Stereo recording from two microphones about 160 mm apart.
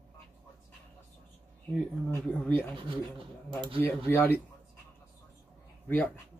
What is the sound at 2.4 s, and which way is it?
Speech, 10° left (ahead or behind).